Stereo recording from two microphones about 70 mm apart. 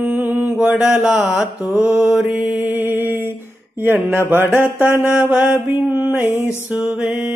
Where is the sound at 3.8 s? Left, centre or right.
Right.